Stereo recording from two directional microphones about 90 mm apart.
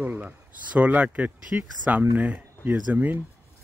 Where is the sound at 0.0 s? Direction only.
15° right (ahead or behind).